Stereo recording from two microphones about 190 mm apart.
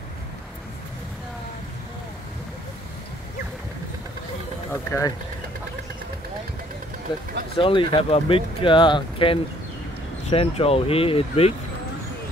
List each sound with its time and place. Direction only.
4.9 s speech: 15° left (ahead or behind)
7.1 s speech: 25° left (ahead or behind)